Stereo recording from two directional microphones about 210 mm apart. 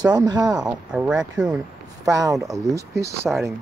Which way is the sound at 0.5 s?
5° right (ahead or behind).